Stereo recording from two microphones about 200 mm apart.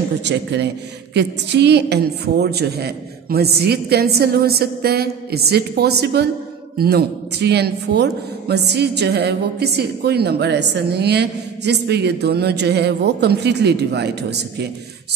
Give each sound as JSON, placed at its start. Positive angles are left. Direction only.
{"t": 0.2, "sound": "a man's voice", "side_deg": -60}